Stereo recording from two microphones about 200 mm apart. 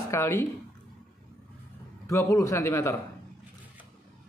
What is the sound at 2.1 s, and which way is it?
Speech, 15° left (ahead or behind).